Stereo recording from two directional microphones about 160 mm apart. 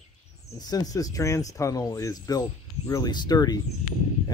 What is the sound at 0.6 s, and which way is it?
Speech, 25° left (ahead or behind).